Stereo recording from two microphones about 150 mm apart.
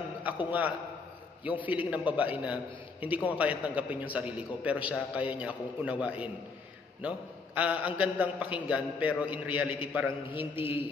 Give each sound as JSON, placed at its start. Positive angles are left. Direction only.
{"t": 0.5, "sound": "a man's voice", "side_deg": -10}
{"t": 10.5, "sound": "a man's voice", "side_deg": 35}